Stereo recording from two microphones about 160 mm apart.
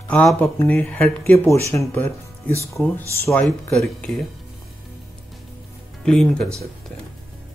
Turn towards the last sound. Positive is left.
turn(degrees=5)  # may be behind; listen again after turning